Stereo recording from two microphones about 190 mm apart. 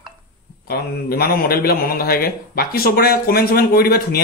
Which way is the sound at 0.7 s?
55° left (ahead or behind).